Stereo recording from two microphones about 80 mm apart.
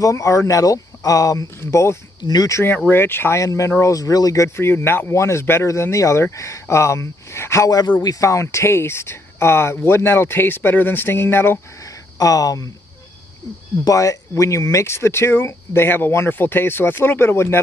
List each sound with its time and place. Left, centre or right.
0.0 s speech: left
1.6 s speech: left
2.2 s speech: left
2.5 s speech: left
3.3 s speech: left
11.8 s a sound: left
13.8 s speech: left